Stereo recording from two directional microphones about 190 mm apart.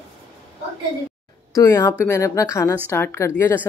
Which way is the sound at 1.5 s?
15° left (ahead or behind).